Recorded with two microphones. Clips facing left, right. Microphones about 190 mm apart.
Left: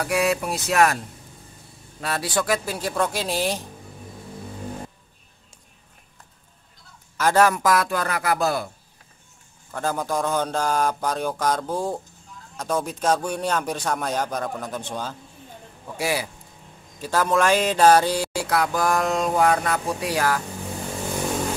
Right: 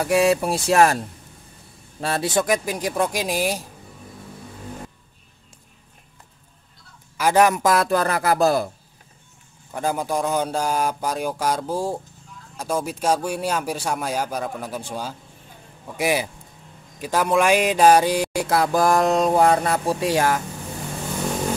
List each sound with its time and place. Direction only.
0.0 s speech: 25° right (ahead or behind)
2.0 s speech: 30° right (ahead or behind); by 3.6 s 10° right (ahead or behind)
7.2 s speech: 15° right (ahead or behind); by 8.6 s 35° right (ahead or behind)
9.7 s speech: 15° right (ahead or behind)
18.7 s speech: 35° right (ahead or behind)